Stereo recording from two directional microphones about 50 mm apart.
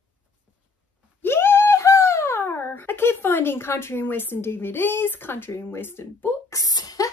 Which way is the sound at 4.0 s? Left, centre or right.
Left.